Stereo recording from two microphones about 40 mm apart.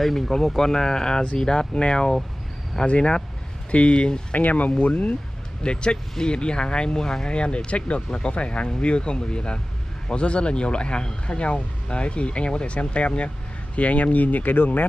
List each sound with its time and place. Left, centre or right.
0.0 s speech: centre; by 4.4 s left
4.4 s speech: left
5.6 s speech: left